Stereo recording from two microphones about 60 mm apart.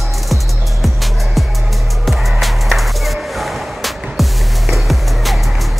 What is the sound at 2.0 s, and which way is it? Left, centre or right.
Music, centre.